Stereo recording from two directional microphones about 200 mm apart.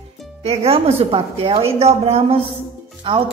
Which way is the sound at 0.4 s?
30° right (ahead or behind).